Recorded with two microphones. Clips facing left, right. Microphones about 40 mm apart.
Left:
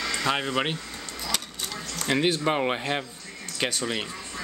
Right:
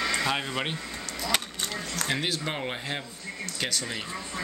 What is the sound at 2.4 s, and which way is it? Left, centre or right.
Speech, left.